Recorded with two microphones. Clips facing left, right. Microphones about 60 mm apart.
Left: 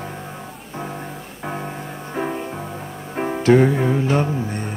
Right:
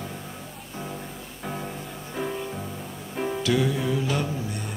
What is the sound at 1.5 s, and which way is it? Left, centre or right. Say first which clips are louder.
Music: left 5 dB; left.